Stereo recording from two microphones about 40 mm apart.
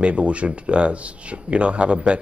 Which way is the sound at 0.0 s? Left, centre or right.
Right.